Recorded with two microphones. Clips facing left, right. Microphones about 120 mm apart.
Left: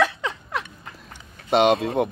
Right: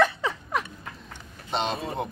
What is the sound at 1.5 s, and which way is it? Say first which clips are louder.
Speech: left 10 dB; 70° left (ahead or behind).